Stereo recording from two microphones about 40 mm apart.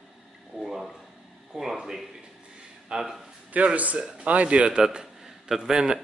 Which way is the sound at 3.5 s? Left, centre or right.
Right.